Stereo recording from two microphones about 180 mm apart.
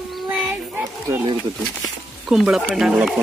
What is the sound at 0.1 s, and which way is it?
Dog, centre (ahead or behind).